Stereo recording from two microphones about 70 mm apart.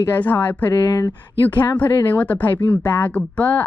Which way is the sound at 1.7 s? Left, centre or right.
Left.